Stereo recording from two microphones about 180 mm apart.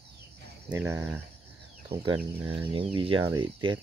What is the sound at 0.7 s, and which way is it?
Speech, 10° right (ahead or behind).